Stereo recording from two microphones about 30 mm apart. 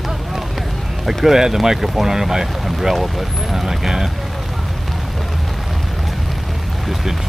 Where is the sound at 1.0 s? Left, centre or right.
Centre.